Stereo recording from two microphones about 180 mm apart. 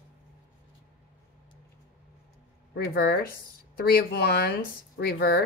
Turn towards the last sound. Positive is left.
turn(degrees=60)  # may be behind; listen again after turning